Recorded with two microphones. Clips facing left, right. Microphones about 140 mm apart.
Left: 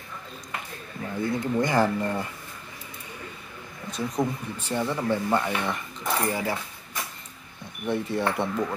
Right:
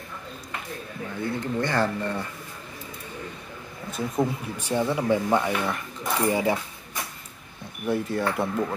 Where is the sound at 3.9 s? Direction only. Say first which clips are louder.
Right 1 dB; 5° right (ahead or behind); by 6.6 s 20° right (ahead or behind).